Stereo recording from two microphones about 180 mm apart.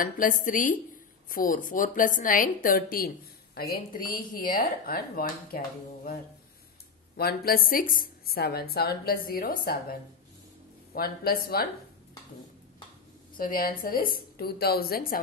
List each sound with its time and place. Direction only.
0.0 s a woman's voice: 50° left (ahead or behind)
7.2 s a woman's voice: 60° left (ahead or behind)
11.0 s a woman's voice: 55° left (ahead or behind)
13.4 s a woman's voice: 55° left (ahead or behind)